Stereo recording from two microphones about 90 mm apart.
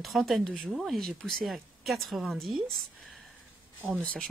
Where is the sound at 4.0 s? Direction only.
15° left (ahead or behind).